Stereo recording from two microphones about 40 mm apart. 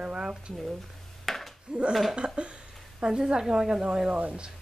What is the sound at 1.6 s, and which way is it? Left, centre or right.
A woman's voice, right.